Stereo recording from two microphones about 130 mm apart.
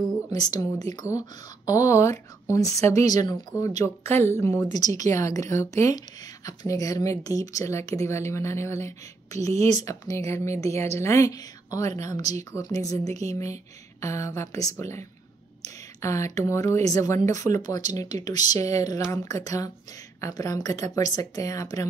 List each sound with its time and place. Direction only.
0.3 s speech: 30° left (ahead or behind)
15.6 s a sound: 25° left (ahead or behind)
16.3 s speech: 25° left (ahead or behind)